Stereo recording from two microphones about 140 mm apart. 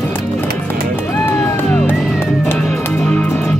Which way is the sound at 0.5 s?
10° left (ahead or behind).